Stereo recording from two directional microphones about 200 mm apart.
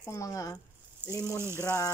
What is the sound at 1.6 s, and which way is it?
Speech, 15° left (ahead or behind).